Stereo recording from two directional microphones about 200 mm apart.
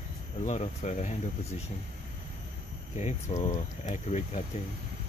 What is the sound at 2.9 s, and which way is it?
Speech, 35° left (ahead or behind).